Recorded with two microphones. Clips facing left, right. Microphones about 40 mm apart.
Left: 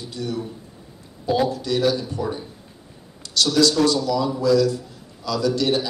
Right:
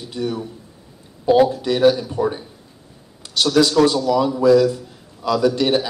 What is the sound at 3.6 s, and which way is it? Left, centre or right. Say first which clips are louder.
A man's voice: right 4 dB; right.